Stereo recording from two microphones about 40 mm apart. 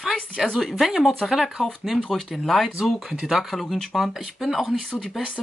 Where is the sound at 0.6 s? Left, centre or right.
Centre.